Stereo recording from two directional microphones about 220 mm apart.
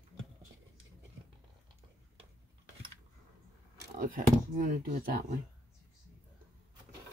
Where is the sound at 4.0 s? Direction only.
40° right (ahead or behind).